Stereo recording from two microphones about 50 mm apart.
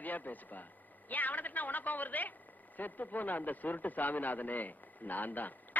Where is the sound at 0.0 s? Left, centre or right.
Left.